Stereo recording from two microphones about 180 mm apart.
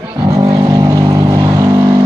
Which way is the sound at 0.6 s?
20° right (ahead or behind).